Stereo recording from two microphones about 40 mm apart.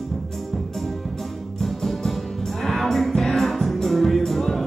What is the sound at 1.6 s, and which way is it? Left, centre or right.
Music, centre.